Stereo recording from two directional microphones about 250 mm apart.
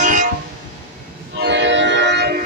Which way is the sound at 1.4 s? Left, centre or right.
Right.